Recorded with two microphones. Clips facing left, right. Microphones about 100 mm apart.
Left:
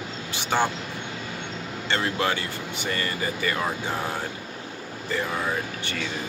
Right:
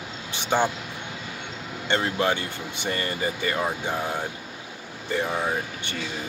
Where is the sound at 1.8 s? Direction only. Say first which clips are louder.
Right 2 dB; 20° right (ahead or behind).